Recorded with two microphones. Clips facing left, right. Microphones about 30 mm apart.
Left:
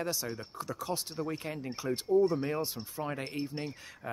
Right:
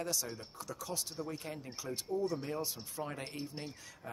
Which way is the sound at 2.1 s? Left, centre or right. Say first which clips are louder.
Left 9 dB; left.